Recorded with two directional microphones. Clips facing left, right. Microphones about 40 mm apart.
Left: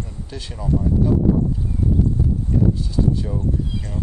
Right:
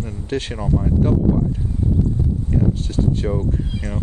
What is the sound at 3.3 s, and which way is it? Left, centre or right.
Speech, right.